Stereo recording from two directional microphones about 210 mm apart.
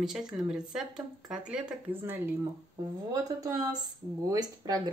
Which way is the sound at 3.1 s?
15° right (ahead or behind).